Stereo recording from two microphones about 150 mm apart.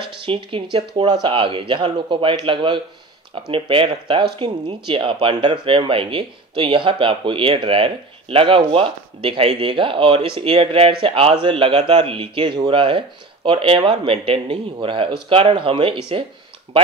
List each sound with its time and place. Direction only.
0.0 s speech: 35° right (ahead or behind)